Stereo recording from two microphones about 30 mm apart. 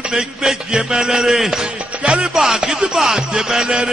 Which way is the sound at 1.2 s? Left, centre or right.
Centre.